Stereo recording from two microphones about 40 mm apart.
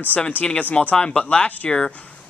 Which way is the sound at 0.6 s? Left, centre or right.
Left.